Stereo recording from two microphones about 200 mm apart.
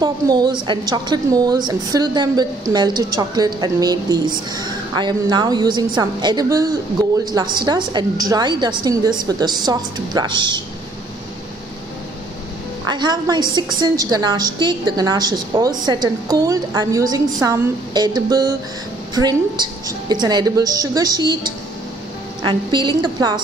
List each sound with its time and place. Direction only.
0.0 s a woman's voice: 20° right (ahead or behind)
12.8 s a woman's voice: 20° right (ahead or behind)